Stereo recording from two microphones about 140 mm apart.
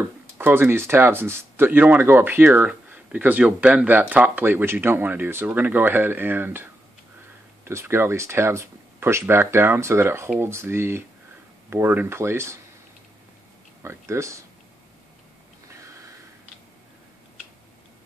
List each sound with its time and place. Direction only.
0.4 s speech: 15° right (ahead or behind)
13.8 s speech: 20° right (ahead or behind)